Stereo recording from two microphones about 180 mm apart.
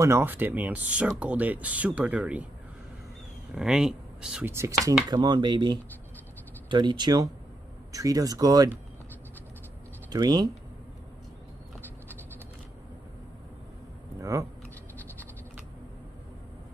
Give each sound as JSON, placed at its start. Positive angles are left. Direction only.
{"t": 0.0, "sound": "speech", "side_deg": -15}
{"t": 3.5, "sound": "speech", "side_deg": -5}
{"t": 10.1, "sound": "speech", "side_deg": -20}
{"t": 14.3, "sound": "speech", "side_deg": -20}